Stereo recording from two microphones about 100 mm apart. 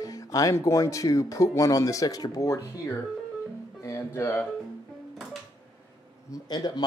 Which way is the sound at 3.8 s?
30° left (ahead or behind).